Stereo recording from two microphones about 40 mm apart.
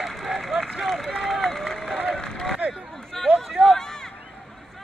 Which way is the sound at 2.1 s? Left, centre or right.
Centre.